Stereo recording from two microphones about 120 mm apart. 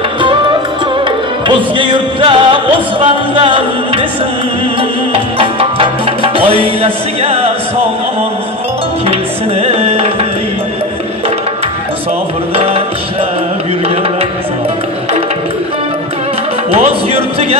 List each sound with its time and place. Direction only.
0.2 s music: 45° right (ahead or behind)
6.8 s speech: 55° right (ahead or behind)
9.6 s music: 55° right (ahead or behind)
12.5 s music: 55° right (ahead or behind)
16.7 s speech: 60° right (ahead or behind)